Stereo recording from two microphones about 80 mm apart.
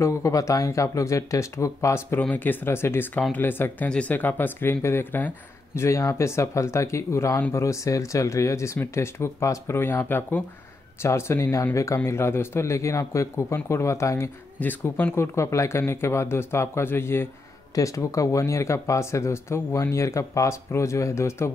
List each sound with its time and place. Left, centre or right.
0.0 s speech: left
2.3 s speech: left
5.8 s speech: left
14.6 s speech: left
15.3 s speech: left
17.7 s speech: left